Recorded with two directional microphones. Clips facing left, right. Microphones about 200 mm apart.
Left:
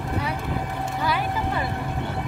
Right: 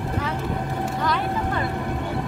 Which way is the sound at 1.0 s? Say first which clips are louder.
Even; 5° left (ahead or behind).